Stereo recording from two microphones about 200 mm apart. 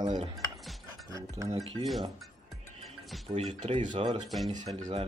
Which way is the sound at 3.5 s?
25° right (ahead or behind).